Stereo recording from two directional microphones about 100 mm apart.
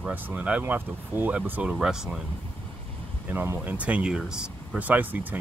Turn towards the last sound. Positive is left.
turn(degrees=-15)  # may be behind; listen again after turning